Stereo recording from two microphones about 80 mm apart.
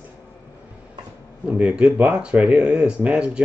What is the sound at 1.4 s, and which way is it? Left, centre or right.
Speech, centre.